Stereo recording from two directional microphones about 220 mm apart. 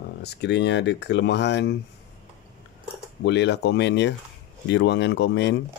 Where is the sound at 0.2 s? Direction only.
50° left (ahead or behind).